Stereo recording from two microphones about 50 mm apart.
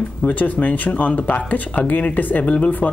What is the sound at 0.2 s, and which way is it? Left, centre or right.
Speech, left.